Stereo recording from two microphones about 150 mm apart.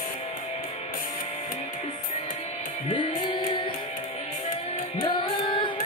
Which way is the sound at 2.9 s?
30° left (ahead or behind).